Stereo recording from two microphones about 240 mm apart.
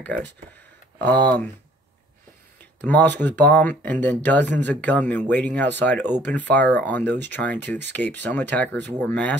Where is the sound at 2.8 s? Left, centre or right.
Centre.